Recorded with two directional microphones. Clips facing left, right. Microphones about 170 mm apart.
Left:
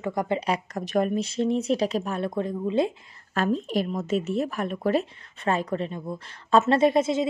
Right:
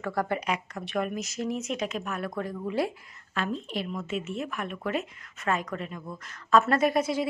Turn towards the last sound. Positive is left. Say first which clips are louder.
# left 4 dB
turn(degrees=25)  # may be behind; listen again after turning